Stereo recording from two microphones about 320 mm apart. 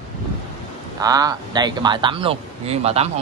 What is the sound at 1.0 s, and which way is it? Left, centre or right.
Speech, centre.